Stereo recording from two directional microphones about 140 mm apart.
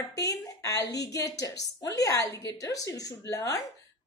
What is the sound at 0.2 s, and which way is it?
A woman's voice, 20° left (ahead or behind).